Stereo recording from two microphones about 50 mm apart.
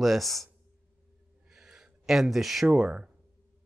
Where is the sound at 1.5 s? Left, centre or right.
Centre.